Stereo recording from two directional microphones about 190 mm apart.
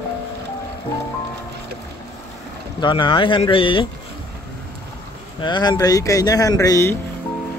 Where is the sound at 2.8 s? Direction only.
25° left (ahead or behind).